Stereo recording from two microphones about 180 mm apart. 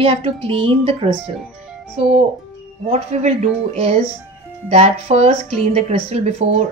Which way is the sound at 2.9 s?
40° right (ahead or behind).